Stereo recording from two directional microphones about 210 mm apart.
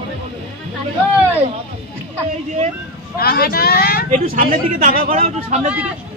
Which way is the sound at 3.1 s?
45° left (ahead or behind).